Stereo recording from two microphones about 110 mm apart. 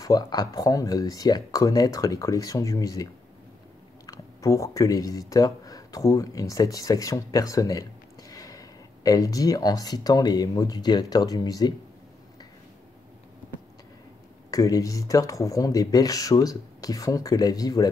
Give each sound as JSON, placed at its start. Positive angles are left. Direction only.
{"t": 0.0, "sound": "speech", "side_deg": 35}
{"t": 14.5, "sound": "speech", "side_deg": 30}